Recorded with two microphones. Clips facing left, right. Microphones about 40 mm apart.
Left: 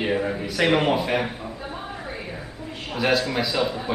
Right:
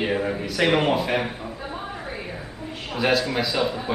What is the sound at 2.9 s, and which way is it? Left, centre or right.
A man's voice, centre.